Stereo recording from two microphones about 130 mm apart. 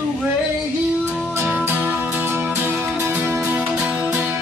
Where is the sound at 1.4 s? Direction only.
15° right (ahead or behind).